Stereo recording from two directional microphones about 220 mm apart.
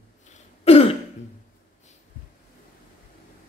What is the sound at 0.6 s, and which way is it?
Throat clearing, 30° left (ahead or behind).